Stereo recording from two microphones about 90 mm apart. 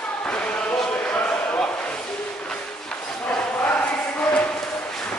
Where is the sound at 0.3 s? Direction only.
15° left (ahead or behind).